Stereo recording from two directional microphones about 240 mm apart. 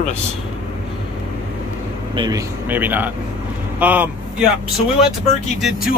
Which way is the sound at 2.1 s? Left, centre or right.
Centre.